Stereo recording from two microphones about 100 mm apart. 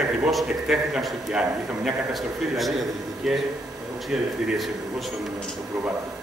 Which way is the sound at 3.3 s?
Centre (ahead or behind).